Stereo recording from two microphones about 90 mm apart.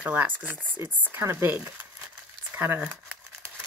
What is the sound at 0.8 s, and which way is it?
Speech, 30° right (ahead or behind).